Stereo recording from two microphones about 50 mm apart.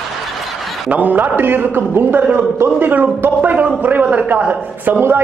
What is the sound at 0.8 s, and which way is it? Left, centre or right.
A man's voice, right.